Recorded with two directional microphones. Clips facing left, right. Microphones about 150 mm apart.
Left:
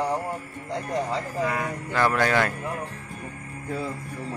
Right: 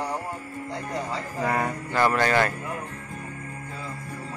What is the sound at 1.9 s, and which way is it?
Speech, 5° right (ahead or behind).